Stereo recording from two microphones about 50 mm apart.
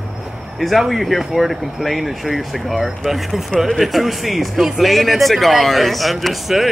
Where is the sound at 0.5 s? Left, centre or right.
Centre.